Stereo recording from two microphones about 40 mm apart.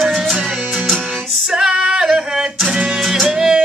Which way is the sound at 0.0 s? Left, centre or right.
Centre.